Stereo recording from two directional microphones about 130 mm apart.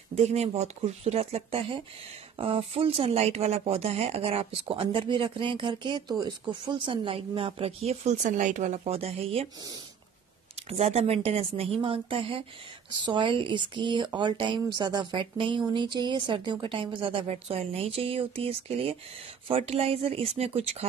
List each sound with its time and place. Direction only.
0.1 s speech: 55° right (ahead or behind)
10.7 s speech: 55° right (ahead or behind)